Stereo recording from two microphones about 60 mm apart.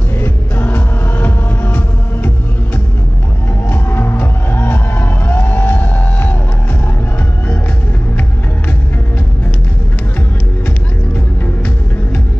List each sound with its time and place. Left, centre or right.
0.2 s music: left
3.6 s music: left